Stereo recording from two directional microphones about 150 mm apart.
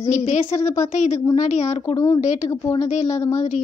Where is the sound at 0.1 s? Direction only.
50° left (ahead or behind).